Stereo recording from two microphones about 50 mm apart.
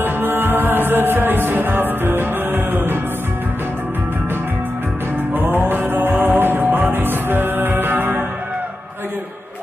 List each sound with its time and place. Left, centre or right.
0.0 s music: right
5.3 s music: right